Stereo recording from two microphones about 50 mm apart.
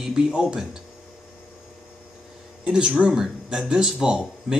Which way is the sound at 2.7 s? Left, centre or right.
Centre.